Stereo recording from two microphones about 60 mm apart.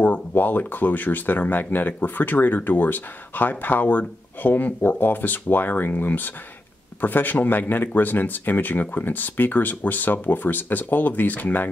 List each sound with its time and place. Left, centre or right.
0.0 s speech: left